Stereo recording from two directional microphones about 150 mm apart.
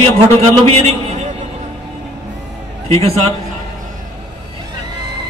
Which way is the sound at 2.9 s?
45° right (ahead or behind).